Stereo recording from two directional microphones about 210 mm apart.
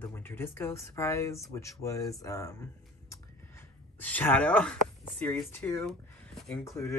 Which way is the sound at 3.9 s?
10° left (ahead or behind).